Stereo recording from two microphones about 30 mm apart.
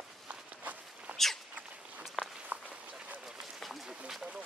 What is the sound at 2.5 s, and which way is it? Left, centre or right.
Walk, right.